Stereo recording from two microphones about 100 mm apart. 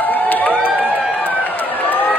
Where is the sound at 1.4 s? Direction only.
20° left (ahead or behind).